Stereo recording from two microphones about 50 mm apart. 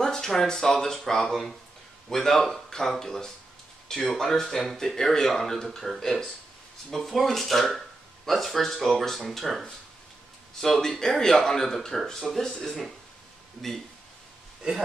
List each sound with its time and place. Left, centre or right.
0.0 s speech: centre